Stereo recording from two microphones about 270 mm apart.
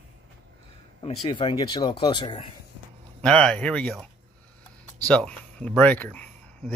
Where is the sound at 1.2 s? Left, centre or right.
Centre.